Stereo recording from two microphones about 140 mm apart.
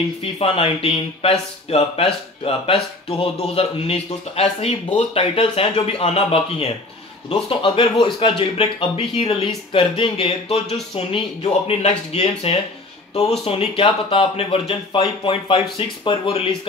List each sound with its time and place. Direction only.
0.2 s speech: 45° left (ahead or behind)